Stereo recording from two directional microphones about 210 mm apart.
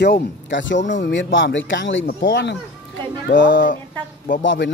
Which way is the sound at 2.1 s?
45° left (ahead or behind).